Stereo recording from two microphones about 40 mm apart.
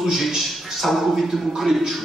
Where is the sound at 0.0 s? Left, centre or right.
Centre.